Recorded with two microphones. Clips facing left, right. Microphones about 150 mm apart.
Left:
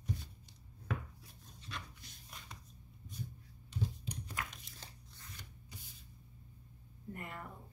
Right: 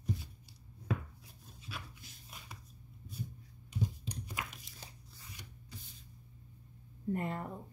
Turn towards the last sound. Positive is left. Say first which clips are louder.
# right 10 dB
turn(degrees=-30)  # may be behind; listen again after turning